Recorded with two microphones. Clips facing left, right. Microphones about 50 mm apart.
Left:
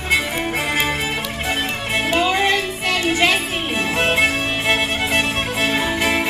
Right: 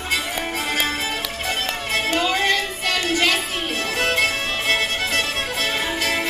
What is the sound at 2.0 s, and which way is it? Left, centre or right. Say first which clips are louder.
Music: left 3 dB; centre.